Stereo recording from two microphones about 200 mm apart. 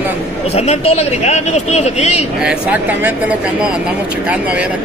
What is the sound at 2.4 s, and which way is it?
Speech, 10° right (ahead or behind).